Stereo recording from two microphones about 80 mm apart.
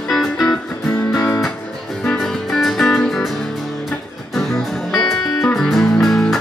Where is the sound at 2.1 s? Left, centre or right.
Centre.